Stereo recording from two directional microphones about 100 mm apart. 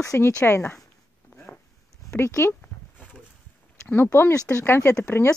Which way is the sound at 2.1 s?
25° left (ahead or behind).